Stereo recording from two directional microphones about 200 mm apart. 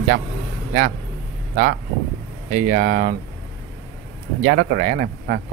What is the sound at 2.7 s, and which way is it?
Speech, 40° right (ahead or behind).